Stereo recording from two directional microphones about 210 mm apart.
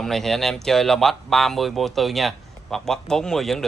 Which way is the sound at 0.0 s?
Centre (ahead or behind).